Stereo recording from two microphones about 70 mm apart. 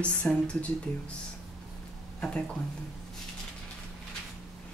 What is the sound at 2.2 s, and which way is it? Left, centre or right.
Speech, centre.